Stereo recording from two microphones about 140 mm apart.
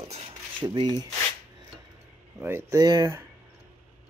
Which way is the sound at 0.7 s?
30° right (ahead or behind).